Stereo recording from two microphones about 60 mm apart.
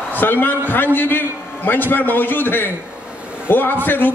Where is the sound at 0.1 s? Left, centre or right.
Left.